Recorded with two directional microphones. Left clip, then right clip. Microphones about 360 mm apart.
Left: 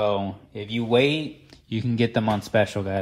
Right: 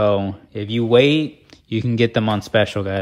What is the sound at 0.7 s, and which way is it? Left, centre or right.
Speech, right.